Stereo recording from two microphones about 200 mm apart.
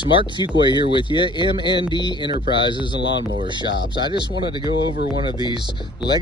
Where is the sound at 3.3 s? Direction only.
25° right (ahead or behind).